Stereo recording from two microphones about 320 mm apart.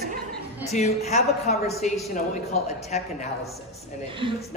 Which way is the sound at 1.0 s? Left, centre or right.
Centre.